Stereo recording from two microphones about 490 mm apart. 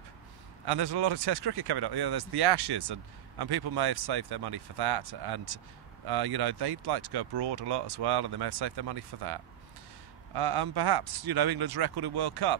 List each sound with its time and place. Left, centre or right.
0.7 s speech: right